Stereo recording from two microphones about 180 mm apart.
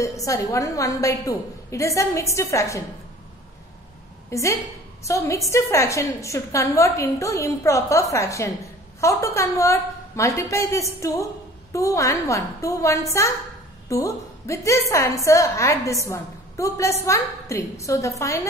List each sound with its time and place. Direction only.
0.0 s a woman's voice: 15° left (ahead or behind)
4.3 s a woman's voice: 15° left (ahead or behind)